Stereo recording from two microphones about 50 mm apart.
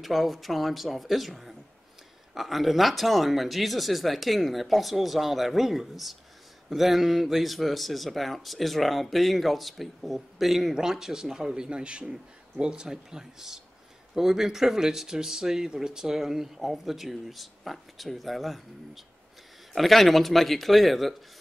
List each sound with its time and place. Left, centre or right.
0.0 s speech: centre